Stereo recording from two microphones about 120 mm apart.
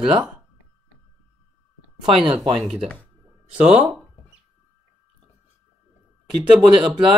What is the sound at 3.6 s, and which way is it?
Speech, 10° right (ahead or behind).